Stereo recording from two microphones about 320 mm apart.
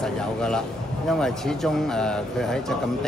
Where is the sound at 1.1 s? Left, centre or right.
Centre.